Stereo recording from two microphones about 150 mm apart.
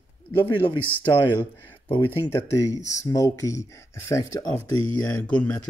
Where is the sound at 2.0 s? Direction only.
15° left (ahead or behind).